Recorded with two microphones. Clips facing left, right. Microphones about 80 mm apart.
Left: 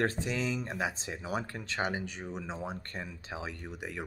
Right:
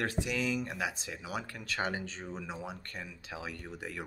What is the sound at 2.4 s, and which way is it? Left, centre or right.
Speech, left.